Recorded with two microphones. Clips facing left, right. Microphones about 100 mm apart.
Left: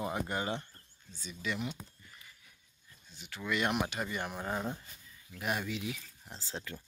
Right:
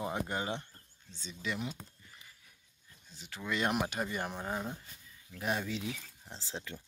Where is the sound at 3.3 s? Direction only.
30° right (ahead or behind).